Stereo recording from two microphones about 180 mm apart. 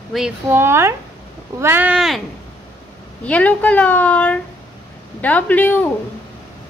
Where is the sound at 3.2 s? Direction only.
10° left (ahead or behind).